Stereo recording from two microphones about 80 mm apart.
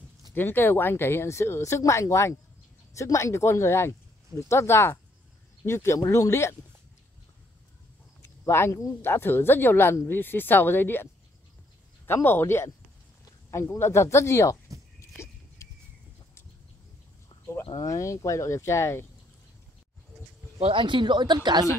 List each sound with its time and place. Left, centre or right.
0.3 s speech: left
8.2 s speech: left
12.1 s speech: left
15.0 s a sound: left
17.7 s speech: left
20.7 s speech: right